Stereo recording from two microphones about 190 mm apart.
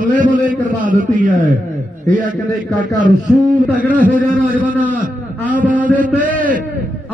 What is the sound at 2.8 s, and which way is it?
Speech, 45° right (ahead or behind).